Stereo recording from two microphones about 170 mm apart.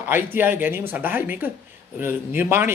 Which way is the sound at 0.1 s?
10° right (ahead or behind).